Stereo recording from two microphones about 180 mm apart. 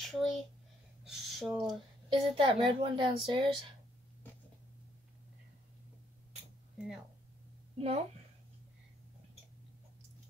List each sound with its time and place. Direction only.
0.0 s a child's voice: centre (ahead or behind)
2.0 s a woman's voice: 30° right (ahead or behind)
6.8 s speech: 5° right (ahead or behind)
7.7 s a woman's voice: 35° right (ahead or behind)